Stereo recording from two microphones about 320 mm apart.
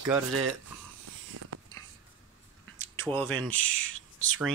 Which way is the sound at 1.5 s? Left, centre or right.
Right.